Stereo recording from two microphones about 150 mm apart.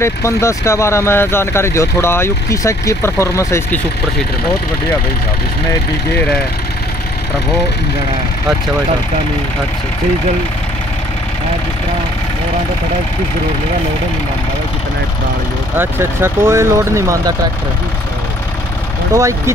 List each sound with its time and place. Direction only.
0.0 s speech: 20° left (ahead or behind)
6.1 s speech: 5° left (ahead or behind)
15.8 s speech: 15° right (ahead or behind)
19.1 s speech: 20° right (ahead or behind)